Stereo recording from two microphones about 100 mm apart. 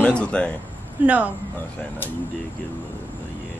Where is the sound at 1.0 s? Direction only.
15° right (ahead or behind).